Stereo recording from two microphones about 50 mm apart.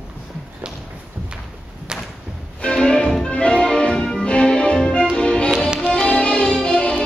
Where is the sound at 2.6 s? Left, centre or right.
Centre.